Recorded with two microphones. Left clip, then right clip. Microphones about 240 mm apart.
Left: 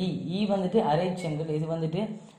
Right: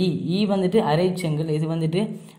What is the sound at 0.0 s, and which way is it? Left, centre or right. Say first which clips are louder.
Speech: right 8 dB; right.